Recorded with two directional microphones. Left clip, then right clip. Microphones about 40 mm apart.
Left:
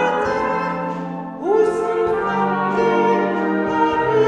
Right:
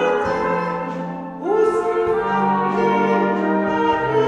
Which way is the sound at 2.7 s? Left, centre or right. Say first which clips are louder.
Left 4 dB; centre.